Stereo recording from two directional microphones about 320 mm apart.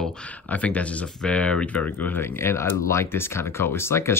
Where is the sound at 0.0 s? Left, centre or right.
Centre.